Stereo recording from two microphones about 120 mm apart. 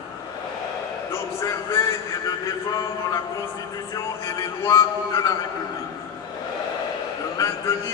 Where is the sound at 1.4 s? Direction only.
25° left (ahead or behind).